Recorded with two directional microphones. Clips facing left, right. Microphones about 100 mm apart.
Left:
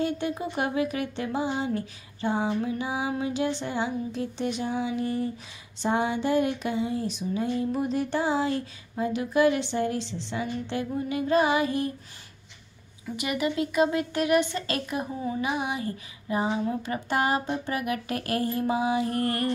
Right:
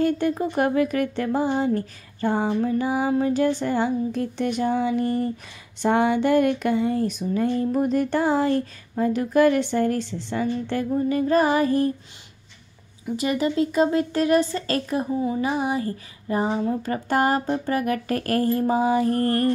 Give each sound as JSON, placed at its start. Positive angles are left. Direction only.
{"t": 0.0, "sound": "speech", "side_deg": -45}
{"t": 13.1, "sound": "speech", "side_deg": -35}